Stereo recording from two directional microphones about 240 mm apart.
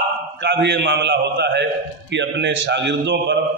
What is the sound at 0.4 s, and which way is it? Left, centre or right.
A man's voice, right.